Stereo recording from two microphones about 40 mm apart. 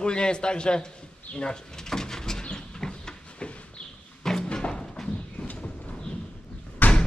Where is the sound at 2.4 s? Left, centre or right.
Left.